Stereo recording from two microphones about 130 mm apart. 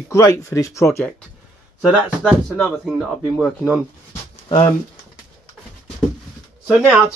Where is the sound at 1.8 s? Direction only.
10° right (ahead or behind).